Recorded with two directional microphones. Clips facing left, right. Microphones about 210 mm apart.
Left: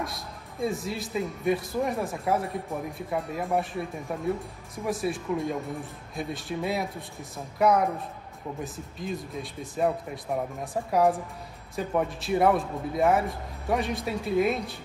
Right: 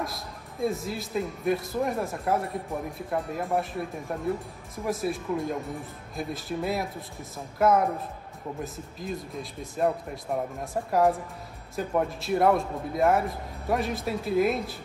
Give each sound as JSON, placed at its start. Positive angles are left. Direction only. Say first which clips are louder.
{"t": 0.0, "sound": "speech", "louder": "right 1 dB", "side_deg": 0}